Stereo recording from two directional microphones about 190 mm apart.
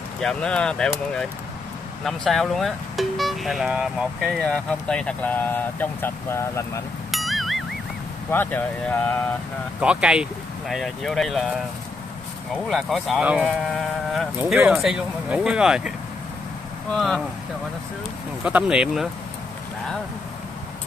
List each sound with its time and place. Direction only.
0.2 s speech: 5° left (ahead or behind)
7.1 s music: centre (ahead or behind)
8.3 s speech: 10° left (ahead or behind)
9.8 s speech: 5° right (ahead or behind)
12.6 s speech: centre (ahead or behind)
16.9 s speech: centre (ahead or behind)
18.4 s speech: 5° right (ahead or behind)